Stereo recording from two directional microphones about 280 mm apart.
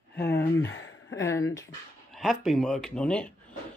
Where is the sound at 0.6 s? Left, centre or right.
Left.